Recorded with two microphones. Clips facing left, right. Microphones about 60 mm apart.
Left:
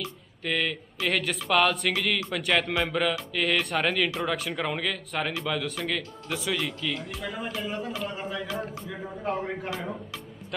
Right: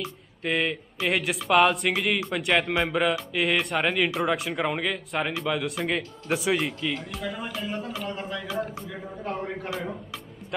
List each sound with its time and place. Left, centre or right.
0.0 s speech: centre
2.5 s speech: centre
5.1 s speech: centre
5.9 s a man's voice: right
7.1 s speech: centre